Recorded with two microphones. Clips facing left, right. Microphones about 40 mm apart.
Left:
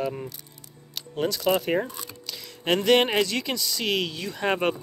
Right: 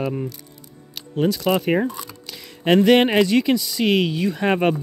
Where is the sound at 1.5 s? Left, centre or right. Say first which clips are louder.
Right 1 dB; centre.